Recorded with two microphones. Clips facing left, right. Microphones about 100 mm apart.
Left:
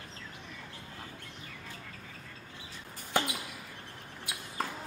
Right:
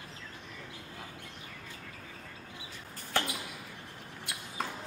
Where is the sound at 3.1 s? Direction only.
15° left (ahead or behind).